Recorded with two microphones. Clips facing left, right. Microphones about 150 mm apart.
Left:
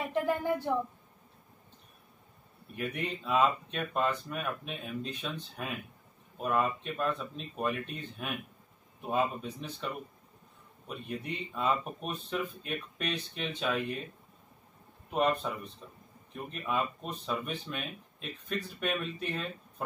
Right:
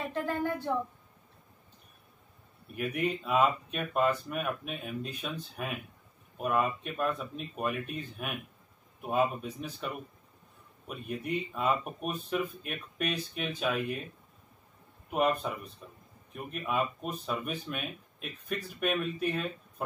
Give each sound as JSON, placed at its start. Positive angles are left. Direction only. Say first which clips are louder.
{"t": 0.1, "sound": "a sound", "louder": "left 4 dB", "side_deg": 15}
{"t": 2.7, "sound": "speech", "louder": "right 4 dB", "side_deg": -5}
{"t": 15.0, "sound": "speech", "louder": "right 1 dB", "side_deg": -5}